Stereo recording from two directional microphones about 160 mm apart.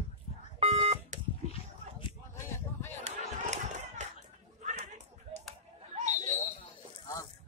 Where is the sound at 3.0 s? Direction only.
45° right (ahead or behind).